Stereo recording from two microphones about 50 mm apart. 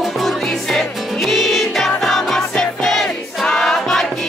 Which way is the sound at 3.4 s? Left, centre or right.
Centre.